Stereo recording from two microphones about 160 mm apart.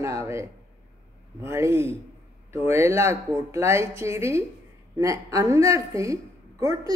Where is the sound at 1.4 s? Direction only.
15° right (ahead or behind).